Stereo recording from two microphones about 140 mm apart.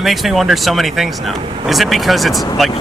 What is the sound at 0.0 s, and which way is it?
Speech, centre (ahead or behind).